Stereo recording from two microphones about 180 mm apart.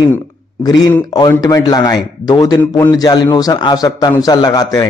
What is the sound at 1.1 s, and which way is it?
A man's voice, 20° left (ahead or behind).